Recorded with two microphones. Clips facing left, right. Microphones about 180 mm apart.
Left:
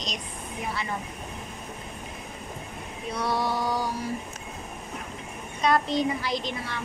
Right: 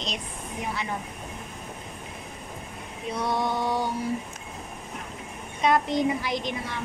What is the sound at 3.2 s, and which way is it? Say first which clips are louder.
Speech: even; 20° right (ahead or behind).